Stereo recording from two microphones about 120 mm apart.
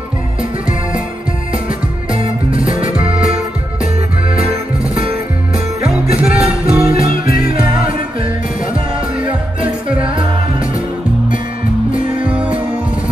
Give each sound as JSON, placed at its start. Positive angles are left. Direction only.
{"t": 2.1, "sound": "music", "side_deg": -50}
{"t": 6.2, "sound": "music", "side_deg": -60}
{"t": 9.6, "sound": "music", "side_deg": -50}
{"t": 11.9, "sound": "music", "side_deg": -10}